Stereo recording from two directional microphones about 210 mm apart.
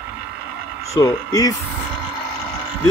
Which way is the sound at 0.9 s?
15° left (ahead or behind).